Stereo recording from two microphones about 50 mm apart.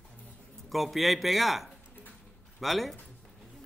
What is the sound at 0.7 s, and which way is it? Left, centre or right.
Speech, centre.